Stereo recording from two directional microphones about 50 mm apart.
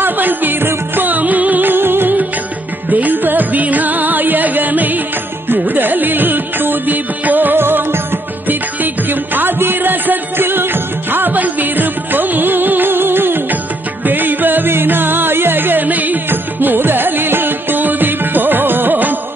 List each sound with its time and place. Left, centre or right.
0.0 s music: right